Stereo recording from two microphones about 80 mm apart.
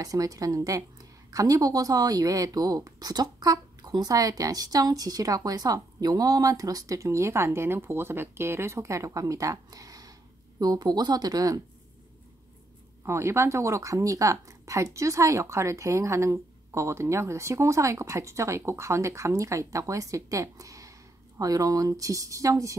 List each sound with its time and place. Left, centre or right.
0.0 s speech: right
13.0 s a woman's voice: right